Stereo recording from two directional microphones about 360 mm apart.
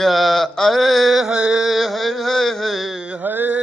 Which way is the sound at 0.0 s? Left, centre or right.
Centre.